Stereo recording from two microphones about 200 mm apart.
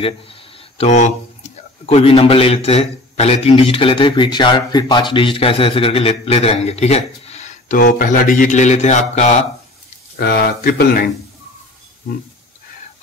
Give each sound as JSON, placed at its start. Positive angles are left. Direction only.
{"t": 0.0, "sound": "a man's voice", "side_deg": 30}
{"t": 10.1, "sound": "speech", "side_deg": 55}